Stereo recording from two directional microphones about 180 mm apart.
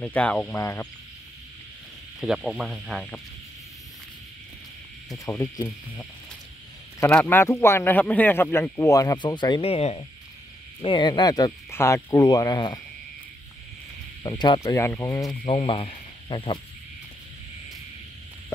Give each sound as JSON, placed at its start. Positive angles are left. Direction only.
{"t": 0.0, "sound": "speech", "side_deg": 5}
{"t": 2.1, "sound": "speech", "side_deg": 0}
{"t": 5.2, "sound": "speech", "side_deg": 20}
{"t": 7.0, "sound": "speech", "side_deg": 10}
{"t": 14.2, "sound": "speech", "side_deg": 20}
{"t": 15.4, "sound": "speech", "side_deg": 30}